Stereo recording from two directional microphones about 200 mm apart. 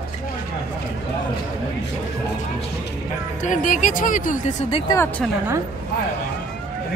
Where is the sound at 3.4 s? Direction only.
40° left (ahead or behind).